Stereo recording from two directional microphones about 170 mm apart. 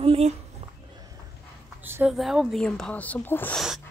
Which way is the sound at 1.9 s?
15° right (ahead or behind).